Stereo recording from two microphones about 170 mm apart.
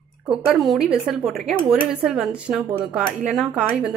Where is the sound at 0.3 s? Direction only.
Centre (ahead or behind).